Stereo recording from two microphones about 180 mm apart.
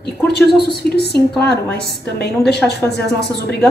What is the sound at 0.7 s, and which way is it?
Speech, 65° left (ahead or behind).